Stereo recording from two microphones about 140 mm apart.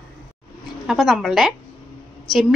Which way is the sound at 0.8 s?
Centre (ahead or behind).